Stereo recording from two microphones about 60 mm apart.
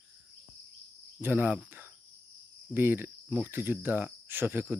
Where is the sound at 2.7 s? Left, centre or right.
Right.